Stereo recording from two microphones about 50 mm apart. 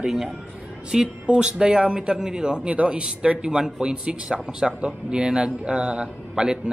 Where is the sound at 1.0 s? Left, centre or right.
Right.